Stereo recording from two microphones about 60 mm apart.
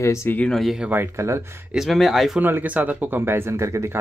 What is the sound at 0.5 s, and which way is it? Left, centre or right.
Speech, centre.